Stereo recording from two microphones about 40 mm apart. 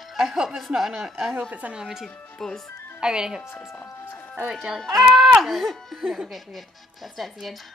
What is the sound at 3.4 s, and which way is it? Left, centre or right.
Speech, left.